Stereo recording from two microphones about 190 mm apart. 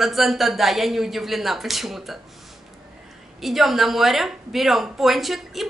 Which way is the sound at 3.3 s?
Centre (ahead or behind).